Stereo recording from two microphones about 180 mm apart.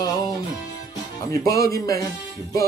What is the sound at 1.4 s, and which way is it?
Speech, 20° left (ahead or behind).